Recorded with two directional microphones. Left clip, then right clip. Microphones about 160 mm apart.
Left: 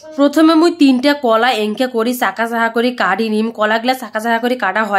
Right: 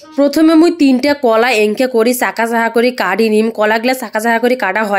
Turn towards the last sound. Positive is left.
turn(degrees=-25)  # may be behind; listen again after turning